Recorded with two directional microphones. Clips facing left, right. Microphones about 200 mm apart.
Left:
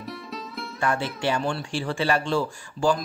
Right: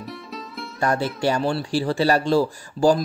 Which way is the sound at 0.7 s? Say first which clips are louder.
Right 4 dB; 40° right (ahead or behind).